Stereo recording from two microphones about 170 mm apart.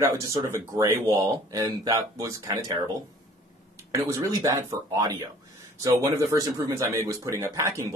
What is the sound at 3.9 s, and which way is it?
Speech, 20° right (ahead or behind).